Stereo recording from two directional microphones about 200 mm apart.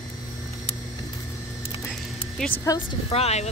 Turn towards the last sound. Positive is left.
turn(degrees=30)  # may be behind; listen again after turning